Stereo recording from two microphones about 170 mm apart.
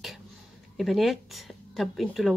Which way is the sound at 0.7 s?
Centre (ahead or behind).